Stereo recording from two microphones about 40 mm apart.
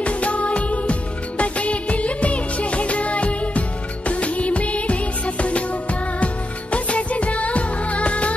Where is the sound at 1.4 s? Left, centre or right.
Left.